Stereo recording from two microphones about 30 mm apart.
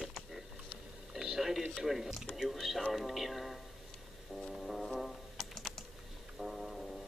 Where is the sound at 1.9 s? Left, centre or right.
Centre.